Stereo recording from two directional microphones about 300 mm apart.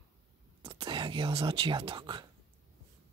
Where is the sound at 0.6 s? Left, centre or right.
Centre.